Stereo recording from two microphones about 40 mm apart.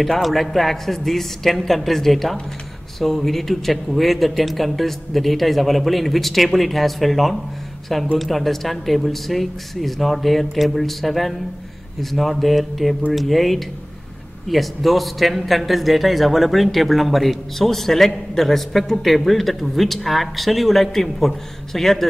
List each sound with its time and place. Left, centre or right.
0.0 s a man's voice: centre